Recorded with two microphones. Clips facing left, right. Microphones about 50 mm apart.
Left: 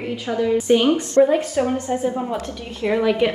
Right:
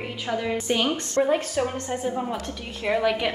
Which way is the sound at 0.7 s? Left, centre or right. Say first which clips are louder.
Left 8 dB; left.